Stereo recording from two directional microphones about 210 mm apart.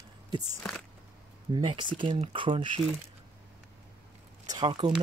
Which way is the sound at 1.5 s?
20° right (ahead or behind).